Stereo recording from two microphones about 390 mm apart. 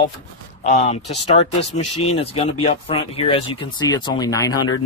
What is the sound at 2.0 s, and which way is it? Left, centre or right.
Speech, centre.